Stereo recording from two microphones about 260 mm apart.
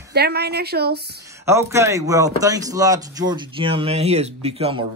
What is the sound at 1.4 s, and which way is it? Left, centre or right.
Speech, centre.